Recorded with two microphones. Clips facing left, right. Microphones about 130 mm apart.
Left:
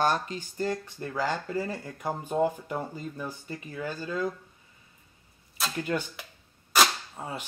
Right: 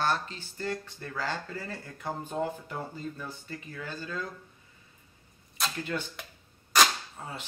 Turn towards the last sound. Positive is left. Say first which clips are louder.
# left 4 dB
turn(degrees=15)  # may be behind; listen again after turning